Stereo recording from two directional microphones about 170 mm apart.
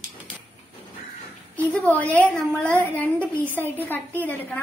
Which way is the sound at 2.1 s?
10° left (ahead or behind).